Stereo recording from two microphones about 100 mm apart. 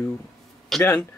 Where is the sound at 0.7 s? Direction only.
5° left (ahead or behind).